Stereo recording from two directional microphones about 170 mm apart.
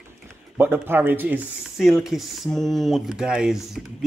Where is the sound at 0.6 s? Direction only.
10° right (ahead or behind).